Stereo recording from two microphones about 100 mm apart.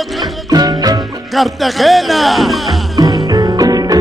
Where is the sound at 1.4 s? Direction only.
Centre (ahead or behind).